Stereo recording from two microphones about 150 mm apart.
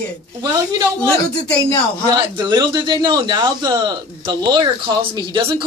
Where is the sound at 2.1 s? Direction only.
25° right (ahead or behind).